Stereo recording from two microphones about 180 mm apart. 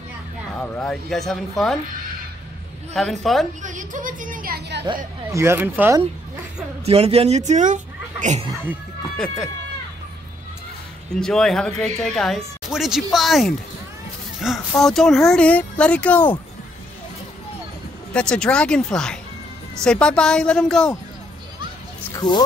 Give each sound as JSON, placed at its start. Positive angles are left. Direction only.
{"t": 0.6, "sound": "speech", "side_deg": 5}
{"t": 2.9, "sound": "speech", "side_deg": 0}
{"t": 3.6, "sound": "a woman's voice", "side_deg": -45}
{"t": 4.8, "sound": "speech", "side_deg": -15}
{"t": 6.9, "sound": "speech", "side_deg": -35}
{"t": 11.1, "sound": "speech", "side_deg": 5}
{"t": 18.1, "sound": "speech", "side_deg": 5}